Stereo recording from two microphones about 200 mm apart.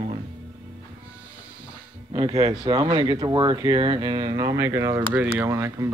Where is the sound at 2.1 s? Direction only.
20° right (ahead or behind).